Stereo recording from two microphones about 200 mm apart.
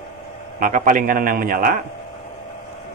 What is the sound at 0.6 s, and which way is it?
Speech, 45° right (ahead or behind).